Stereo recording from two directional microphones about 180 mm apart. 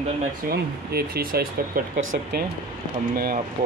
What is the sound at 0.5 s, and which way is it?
Speech, 60° right (ahead or behind).